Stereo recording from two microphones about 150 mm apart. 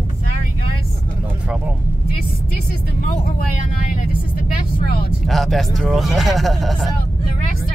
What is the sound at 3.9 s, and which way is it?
Vehicle, 70° left (ahead or behind).